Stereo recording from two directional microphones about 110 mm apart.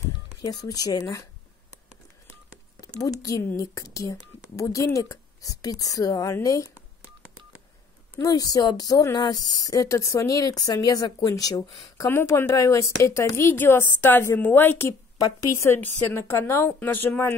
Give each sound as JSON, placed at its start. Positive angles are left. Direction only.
{"t": 0.4, "sound": "speech", "side_deg": 35}
{"t": 2.8, "sound": "speech", "side_deg": 35}
{"t": 8.2, "sound": "speech", "side_deg": 35}
{"t": 12.1, "sound": "speech", "side_deg": 20}